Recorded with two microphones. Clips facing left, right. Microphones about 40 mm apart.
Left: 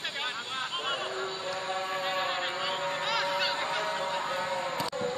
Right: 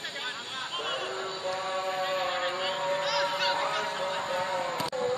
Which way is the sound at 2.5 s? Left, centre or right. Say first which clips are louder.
Right 2 dB; centre.